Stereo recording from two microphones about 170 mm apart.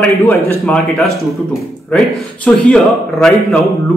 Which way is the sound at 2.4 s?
5° left (ahead or behind).